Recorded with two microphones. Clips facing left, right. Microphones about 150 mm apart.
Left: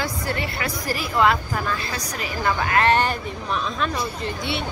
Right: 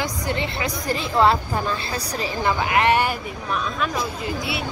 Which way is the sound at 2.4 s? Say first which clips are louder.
Even; 15° right (ahead or behind).